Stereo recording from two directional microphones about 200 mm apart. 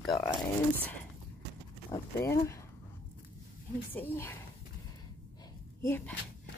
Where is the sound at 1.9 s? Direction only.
15° left (ahead or behind).